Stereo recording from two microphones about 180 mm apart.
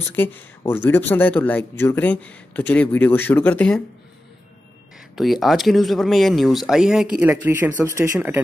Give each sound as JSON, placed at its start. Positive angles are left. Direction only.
{"t": 0.0, "sound": "speech", "side_deg": 10}
{"t": 5.1, "sound": "speech", "side_deg": 0}